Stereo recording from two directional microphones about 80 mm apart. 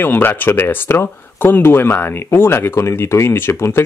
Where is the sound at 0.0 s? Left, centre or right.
Left.